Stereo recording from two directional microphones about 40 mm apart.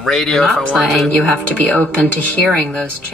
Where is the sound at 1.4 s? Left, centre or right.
Left.